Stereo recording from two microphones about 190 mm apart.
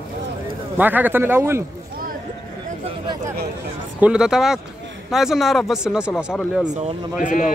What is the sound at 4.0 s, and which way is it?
Speech, 5° right (ahead or behind).